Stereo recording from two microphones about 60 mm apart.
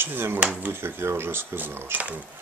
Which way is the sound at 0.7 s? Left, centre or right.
Right.